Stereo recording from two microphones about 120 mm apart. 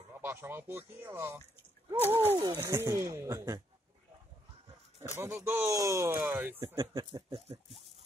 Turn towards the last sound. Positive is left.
turn(degrees=-55)  # may be behind; listen again after turning